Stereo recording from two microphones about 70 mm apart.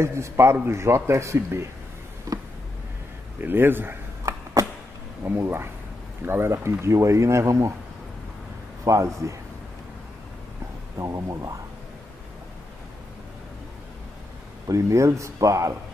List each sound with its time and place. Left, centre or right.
0.0 s a man's voice: right
2.3 s a sound: right
3.3 s a man's voice: right
5.2 s a man's voice: right
8.8 s speech: right
11.0 s speech: right
14.7 s speech: right